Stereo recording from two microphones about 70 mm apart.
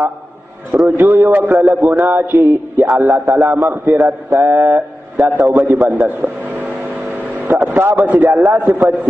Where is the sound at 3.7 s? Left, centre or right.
Right.